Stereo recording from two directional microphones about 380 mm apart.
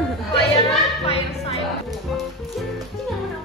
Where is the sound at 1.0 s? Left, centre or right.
Centre.